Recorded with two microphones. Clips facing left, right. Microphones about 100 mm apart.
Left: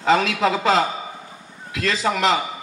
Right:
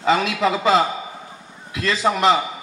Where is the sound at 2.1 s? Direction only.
35° right (ahead or behind).